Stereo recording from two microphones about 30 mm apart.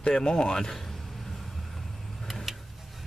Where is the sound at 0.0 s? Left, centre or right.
Left.